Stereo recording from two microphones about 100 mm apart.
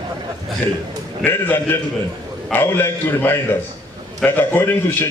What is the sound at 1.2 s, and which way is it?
A man's voice, 20° left (ahead or behind).